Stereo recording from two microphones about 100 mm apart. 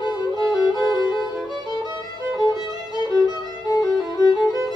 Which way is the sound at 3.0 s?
45° left (ahead or behind).